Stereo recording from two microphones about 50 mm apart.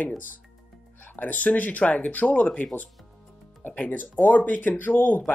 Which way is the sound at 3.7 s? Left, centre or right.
Left.